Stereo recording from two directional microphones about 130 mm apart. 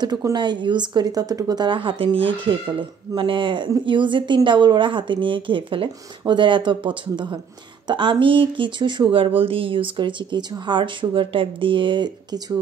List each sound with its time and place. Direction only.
0.0 s speech: 30° right (ahead or behind)